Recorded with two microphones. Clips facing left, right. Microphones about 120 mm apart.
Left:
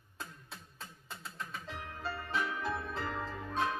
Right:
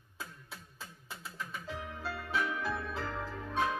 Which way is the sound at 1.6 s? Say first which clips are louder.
Right 2 dB; centre (ahead or behind).